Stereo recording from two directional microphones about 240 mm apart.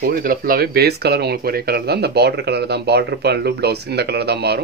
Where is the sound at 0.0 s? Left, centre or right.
Right.